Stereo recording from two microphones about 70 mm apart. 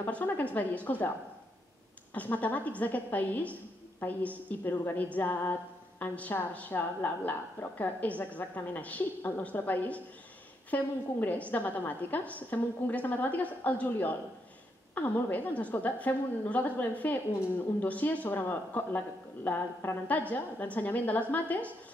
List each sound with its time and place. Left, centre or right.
0.0 s a woman's voice: left
2.1 s a woman's voice: left